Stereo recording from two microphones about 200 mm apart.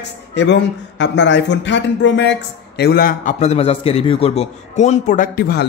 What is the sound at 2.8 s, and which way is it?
A man's voice, 50° left (ahead or behind).